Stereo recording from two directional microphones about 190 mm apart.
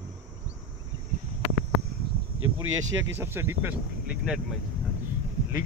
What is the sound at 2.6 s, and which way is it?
Speech, 90° right.